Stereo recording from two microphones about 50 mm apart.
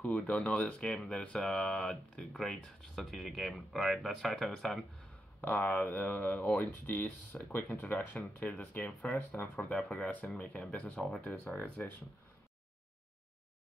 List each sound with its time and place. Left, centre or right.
0.0 s speech: left
3.0 s speech: centre
5.4 s speech: left
7.3 s speech: centre
7.8 s speech: left